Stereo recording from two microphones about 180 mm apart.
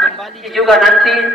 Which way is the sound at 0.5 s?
Centre (ahead or behind).